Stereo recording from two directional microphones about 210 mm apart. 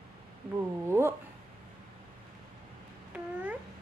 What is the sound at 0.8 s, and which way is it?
Speech, 10° right (ahead or behind).